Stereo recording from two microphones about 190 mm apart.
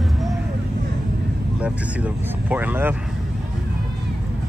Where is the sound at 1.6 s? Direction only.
10° right (ahead or behind).